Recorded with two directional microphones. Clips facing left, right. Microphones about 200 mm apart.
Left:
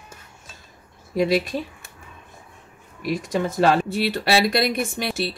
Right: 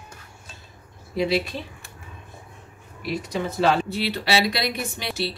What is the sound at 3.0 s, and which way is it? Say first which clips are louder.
Speech: left 3 dB; 45° left (ahead or behind).